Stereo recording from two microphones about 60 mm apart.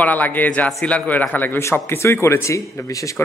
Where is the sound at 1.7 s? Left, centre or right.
Left.